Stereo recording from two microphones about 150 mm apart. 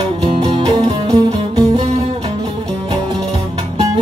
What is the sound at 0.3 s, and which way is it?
Music, 30° right (ahead or behind).